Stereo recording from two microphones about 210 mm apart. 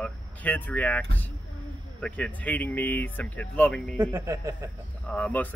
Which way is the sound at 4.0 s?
10° right (ahead or behind).